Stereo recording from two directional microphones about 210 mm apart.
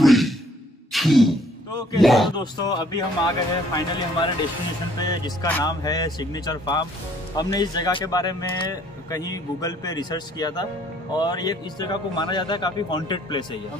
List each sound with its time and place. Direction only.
0.0 s sigh: centre (ahead or behind)
0.9 s a sound: centre (ahead or behind)
2.0 s speech: centre (ahead or behind)
2.3 s a man's voice: 20° left (ahead or behind)